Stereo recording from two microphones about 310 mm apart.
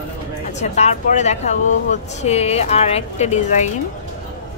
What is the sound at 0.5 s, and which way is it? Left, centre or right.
Speech, left.